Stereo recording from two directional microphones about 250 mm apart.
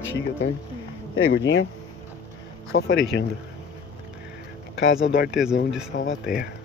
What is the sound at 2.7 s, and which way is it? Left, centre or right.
Speech, left.